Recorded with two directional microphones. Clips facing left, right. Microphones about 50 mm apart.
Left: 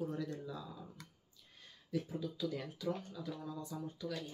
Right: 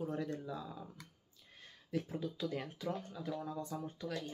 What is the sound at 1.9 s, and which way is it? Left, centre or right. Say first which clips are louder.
Speech: even; right.